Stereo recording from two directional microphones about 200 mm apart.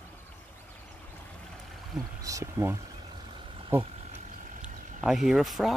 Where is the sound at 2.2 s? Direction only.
15° right (ahead or behind).